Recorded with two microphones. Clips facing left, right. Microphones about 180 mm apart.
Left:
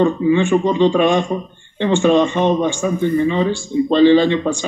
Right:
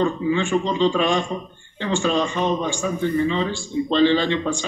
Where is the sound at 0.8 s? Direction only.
20° left (ahead or behind).